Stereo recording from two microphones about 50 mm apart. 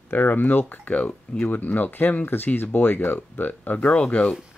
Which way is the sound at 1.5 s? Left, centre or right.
Left.